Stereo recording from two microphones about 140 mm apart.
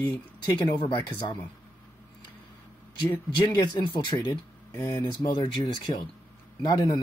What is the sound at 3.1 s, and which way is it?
Speech, 30° left (ahead or behind).